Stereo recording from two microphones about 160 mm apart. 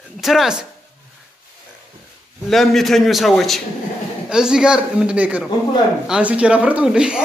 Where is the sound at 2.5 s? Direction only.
Centre (ahead or behind).